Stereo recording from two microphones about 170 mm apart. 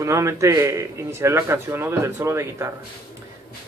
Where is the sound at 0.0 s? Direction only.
15° right (ahead or behind).